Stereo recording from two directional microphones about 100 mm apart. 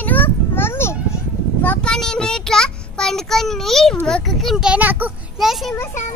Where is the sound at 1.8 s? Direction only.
5° left (ahead or behind); by 5.1 s 15° right (ahead or behind).